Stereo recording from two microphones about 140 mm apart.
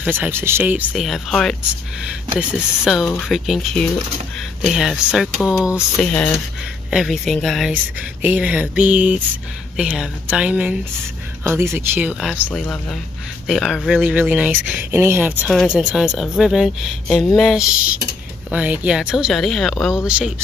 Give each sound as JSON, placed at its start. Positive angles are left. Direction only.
{"t": 0.0, "sound": "speech", "side_deg": -15}
{"t": 0.9, "sound": "speech", "side_deg": 0}
{"t": 2.3, "sound": "speech", "side_deg": -5}
{"t": 7.7, "sound": "speech", "side_deg": -10}
{"t": 13.5, "sound": "speech", "side_deg": 0}
{"t": 20.1, "sound": "speech", "side_deg": -10}